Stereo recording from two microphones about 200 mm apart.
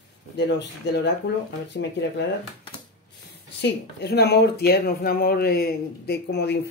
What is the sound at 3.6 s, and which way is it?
Speech, 55° left (ahead or behind).